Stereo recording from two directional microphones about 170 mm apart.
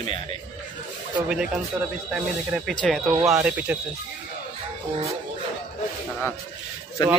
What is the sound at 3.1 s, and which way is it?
Speech, 5° right (ahead or behind).